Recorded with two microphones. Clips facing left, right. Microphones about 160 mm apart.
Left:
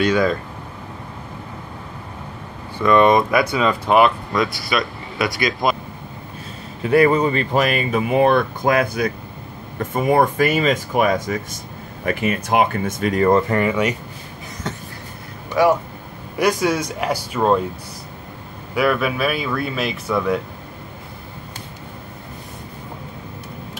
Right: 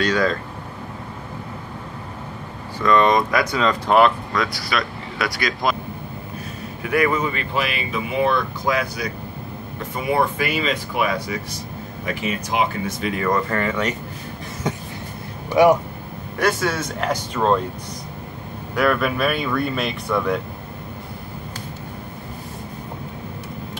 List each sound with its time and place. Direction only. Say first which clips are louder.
0.1 s speech: left 2 dB; 10° left (ahead or behind)
2.8 s speech: left 3 dB; 10° left (ahead or behind)
4.3 s speech: left 3 dB; 25° left (ahead or behind)
6.8 s speech: left 5 dB; 30° left (ahead or behind)
13.3 s speech: left 3 dB; 15° left (ahead or behind)
14.7 s vehicle: right 4 dB; 10° right (ahead or behind)
15.5 s speech: right 2 dB; 15° right (ahead or behind)
16.3 s speech: left 3 dB; 15° left (ahead or behind)
18.8 s speech: left 1 dB; 5° left (ahead or behind)